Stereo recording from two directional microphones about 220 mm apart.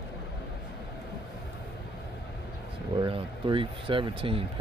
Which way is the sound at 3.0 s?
20° right (ahead or behind).